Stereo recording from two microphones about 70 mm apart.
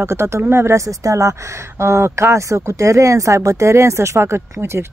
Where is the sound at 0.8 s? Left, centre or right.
Right.